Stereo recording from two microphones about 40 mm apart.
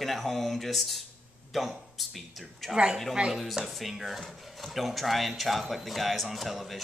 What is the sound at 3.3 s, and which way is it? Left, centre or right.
Speech, centre.